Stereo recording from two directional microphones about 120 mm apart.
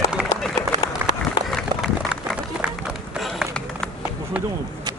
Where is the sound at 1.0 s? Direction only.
20° right (ahead or behind).